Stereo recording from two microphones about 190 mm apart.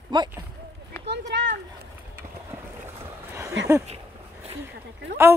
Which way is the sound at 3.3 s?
15° right (ahead or behind).